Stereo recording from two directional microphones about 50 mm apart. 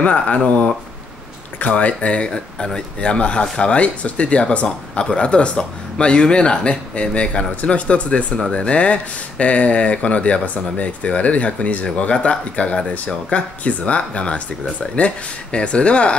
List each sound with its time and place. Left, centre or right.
0.0 s speech: left
1.6 s speech: left